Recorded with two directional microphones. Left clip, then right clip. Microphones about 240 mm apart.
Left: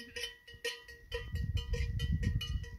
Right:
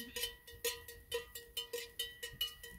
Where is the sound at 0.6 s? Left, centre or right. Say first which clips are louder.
Left 2 dB; right.